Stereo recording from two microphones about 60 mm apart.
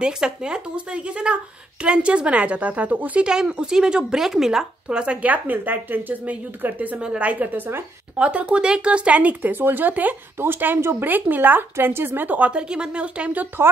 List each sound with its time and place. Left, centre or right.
0.0 s speech: centre
3.3 s speech: centre; by 7.8 s right
8.2 s speech: right
11.1 s speech: right